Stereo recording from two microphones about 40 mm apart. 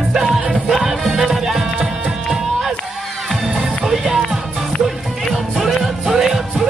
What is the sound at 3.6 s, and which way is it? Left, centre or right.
Music, centre.